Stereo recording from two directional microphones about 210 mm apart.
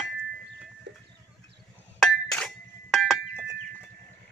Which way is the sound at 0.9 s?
55° right (ahead or behind).